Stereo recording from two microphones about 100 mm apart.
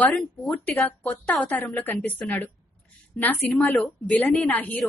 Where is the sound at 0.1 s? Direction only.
Centre (ahead or behind).